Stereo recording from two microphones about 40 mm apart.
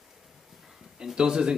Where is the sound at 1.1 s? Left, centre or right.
Right.